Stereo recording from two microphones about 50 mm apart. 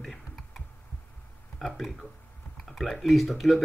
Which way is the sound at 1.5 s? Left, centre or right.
Centre.